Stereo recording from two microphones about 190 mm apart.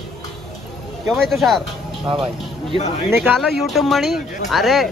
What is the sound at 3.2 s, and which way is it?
Speech, centre (ahead or behind).